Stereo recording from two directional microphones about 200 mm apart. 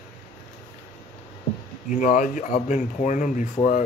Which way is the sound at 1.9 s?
40° left (ahead or behind).